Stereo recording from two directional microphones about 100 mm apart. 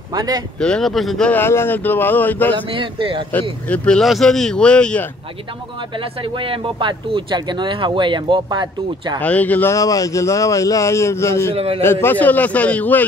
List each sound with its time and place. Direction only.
0.1 s speech: 40° right (ahead or behind)
0.6 s speech: 5° left (ahead or behind)
1.3 s speech: 25° left (ahead or behind)
2.5 s speech: 55° right (ahead or behind)
3.3 s a man's voice: 15° left (ahead or behind)
4.0 s a man's voice: centre (ahead or behind)
5.9 s speech: 60° right (ahead or behind)
9.2 s a man's voice: 15° left (ahead or behind)
9.7 s a man's voice: 35° left (ahead or behind)
11.5 s a man's voice: 75° right (ahead or behind)
11.8 s a man's voice: 25° left (ahead or behind)